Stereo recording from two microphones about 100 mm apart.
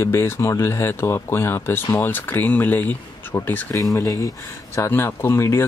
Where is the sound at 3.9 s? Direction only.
30° left (ahead or behind).